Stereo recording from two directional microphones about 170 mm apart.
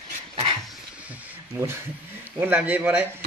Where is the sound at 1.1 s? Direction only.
15° right (ahead or behind).